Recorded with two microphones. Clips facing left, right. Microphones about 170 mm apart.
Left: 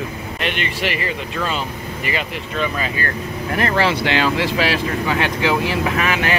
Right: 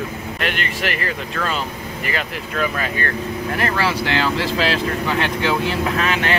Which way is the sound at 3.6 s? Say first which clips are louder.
Left 3 dB; 20° left (ahead or behind).